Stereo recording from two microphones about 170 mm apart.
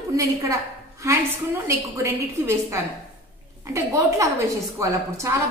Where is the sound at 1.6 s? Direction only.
15° right (ahead or behind).